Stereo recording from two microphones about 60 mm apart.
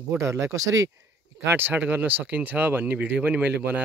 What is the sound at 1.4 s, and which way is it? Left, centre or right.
Speech, right.